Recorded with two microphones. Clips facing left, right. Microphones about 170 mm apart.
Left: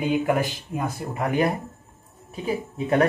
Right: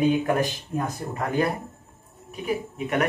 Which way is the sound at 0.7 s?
10° left (ahead or behind).